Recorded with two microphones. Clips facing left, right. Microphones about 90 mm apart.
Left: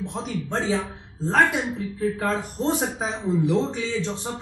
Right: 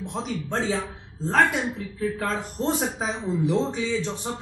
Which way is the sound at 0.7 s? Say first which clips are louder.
Left 2 dB; 20° left (ahead or behind).